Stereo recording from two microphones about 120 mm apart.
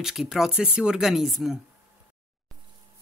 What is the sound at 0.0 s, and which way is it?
Speech, 5° right (ahead or behind).